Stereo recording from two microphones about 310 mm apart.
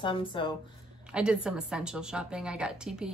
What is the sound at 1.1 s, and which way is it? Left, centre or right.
A woman's voice, centre.